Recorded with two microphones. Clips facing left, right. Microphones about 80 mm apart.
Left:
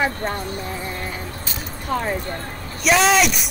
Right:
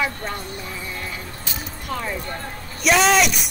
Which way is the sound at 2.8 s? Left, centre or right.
Centre.